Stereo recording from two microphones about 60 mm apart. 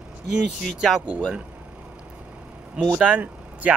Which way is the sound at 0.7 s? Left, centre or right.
Centre.